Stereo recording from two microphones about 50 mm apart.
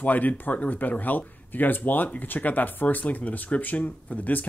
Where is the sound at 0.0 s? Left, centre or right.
Left.